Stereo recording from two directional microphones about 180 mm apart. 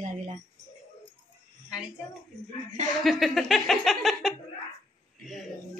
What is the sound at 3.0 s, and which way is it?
A man's voice, centre (ahead or behind).